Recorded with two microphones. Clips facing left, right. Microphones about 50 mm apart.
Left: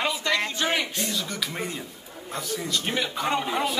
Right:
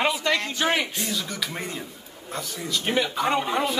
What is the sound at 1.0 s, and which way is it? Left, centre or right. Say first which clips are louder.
Speech: even; centre.